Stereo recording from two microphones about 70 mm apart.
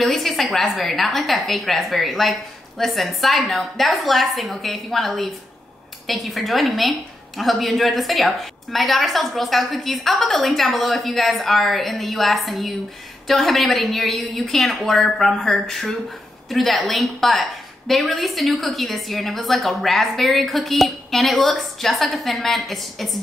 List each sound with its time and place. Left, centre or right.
0.0 s a woman's voice: centre